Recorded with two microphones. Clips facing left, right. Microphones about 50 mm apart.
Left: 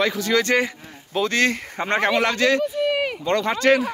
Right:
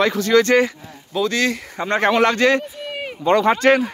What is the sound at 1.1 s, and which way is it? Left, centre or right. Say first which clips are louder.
Speech: right 1 dB; left.